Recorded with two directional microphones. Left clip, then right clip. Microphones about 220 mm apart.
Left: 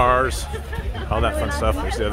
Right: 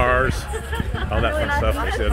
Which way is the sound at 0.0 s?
20° left (ahead or behind).